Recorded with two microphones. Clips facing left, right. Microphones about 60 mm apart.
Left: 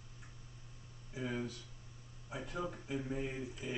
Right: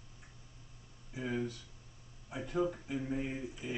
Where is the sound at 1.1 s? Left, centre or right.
Centre.